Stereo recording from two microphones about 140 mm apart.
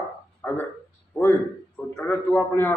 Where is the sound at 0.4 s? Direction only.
10° left (ahead or behind).